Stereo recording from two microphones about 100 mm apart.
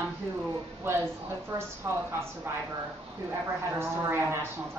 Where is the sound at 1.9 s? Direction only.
25° right (ahead or behind).